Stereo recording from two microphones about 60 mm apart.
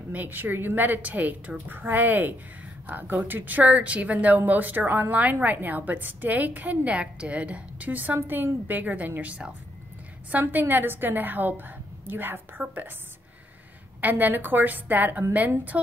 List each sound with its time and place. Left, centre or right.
0.1 s a woman's voice: right
10.5 s a woman's voice: right
14.0 s a woman's voice: right